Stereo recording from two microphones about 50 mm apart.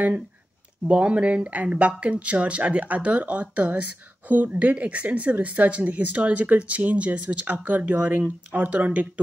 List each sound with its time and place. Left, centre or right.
0.8 s speech: right